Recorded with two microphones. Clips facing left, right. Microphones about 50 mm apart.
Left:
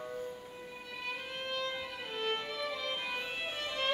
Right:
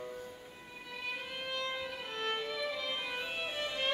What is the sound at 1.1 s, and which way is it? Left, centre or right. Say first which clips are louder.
Music: left 1 dB; centre.